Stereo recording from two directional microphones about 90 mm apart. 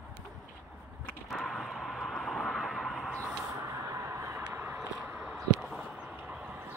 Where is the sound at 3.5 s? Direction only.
40° right (ahead or behind); by 5.3 s 20° right (ahead or behind).